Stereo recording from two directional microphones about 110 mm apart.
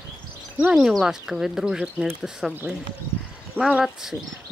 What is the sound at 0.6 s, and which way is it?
Speech, 5° right (ahead or behind).